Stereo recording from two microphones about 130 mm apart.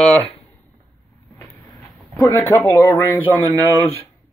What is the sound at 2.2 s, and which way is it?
Speech, 15° left (ahead or behind).